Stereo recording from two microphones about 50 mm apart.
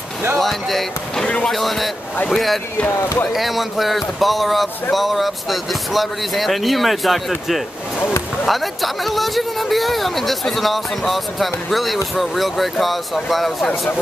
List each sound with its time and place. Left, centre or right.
0.4 s speech: centre
1.2 s speech: left
1.5 s speech: centre
2.9 s speech: left
3.3 s speech: centre